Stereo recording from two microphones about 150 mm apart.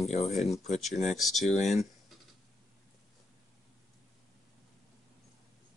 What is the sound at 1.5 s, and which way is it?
Speech, 50° left (ahead or behind).